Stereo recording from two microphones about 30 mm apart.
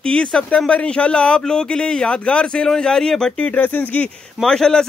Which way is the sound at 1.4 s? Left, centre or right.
Left.